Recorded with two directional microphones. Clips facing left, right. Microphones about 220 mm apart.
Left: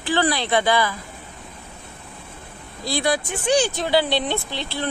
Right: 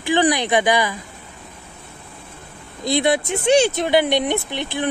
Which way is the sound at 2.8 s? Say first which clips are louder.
Right 4 dB; 20° right (ahead or behind).